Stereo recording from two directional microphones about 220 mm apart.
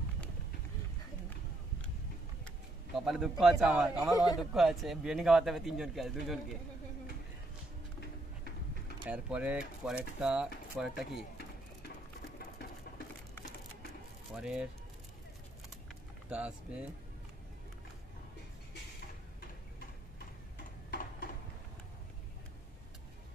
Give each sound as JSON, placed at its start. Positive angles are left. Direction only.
{"t": 3.1, "sound": "speech", "side_deg": 0}
{"t": 9.0, "sound": "speech", "side_deg": -5}
{"t": 14.3, "sound": "speech", "side_deg": -5}
{"t": 16.3, "sound": "speech", "side_deg": -5}
{"t": 20.9, "sound": "a sound", "side_deg": 45}